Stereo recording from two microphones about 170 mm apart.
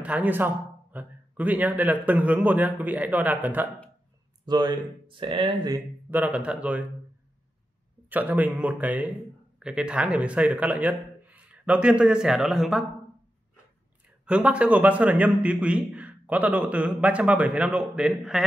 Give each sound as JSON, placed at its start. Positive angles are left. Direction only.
{"t": 0.0, "sound": "a man's voice", "side_deg": -10}
{"t": 4.5, "sound": "speech", "side_deg": -25}
{"t": 6.0, "sound": "a man's voice", "side_deg": -10}
{"t": 8.1, "sound": "a man's voice", "side_deg": -10}
{"t": 14.2, "sound": "a man's voice", "side_deg": -5}